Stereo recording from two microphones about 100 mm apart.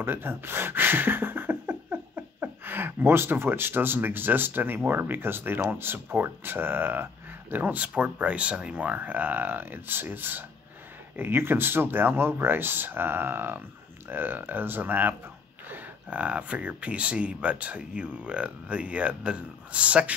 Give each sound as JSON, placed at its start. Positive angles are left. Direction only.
{"t": 0.0, "sound": "speech", "side_deg": -20}